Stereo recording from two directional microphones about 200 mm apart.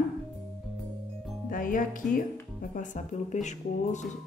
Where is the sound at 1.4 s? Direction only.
45° left (ahead or behind).